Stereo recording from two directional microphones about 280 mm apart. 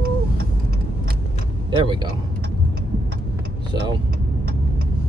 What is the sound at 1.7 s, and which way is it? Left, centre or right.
Speech, centre.